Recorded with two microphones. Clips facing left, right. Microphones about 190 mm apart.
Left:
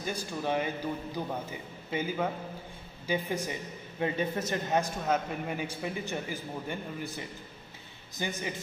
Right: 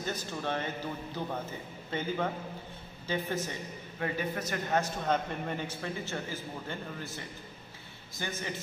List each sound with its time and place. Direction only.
0.0 s a man's voice: 10° left (ahead or behind)
4.0 s a man's voice: 25° left (ahead or behind)
4.7 s a man's voice: 5° left (ahead or behind)